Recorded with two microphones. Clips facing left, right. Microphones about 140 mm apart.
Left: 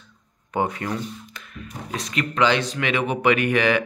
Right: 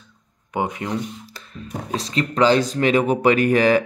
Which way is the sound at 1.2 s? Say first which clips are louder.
Right 2 dB; 35° right (ahead or behind).